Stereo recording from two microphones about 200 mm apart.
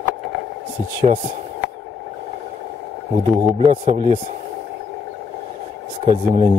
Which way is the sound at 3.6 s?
30° right (ahead or behind).